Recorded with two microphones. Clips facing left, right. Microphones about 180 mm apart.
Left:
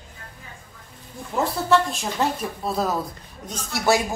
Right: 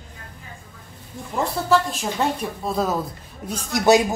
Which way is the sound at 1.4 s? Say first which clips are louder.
Even; centre (ahead or behind).